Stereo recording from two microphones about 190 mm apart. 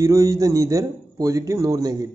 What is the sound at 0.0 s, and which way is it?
A man's voice, 15° right (ahead or behind).